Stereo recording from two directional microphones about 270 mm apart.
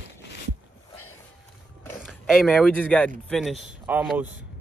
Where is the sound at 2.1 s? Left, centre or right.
Centre.